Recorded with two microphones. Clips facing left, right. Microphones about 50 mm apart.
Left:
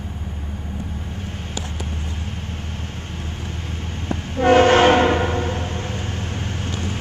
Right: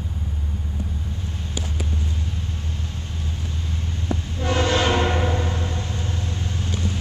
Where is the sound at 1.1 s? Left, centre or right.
Left.